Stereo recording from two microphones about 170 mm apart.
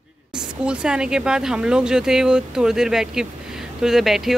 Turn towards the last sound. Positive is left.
turn(degrees=0)  # may be behind; listen again after turning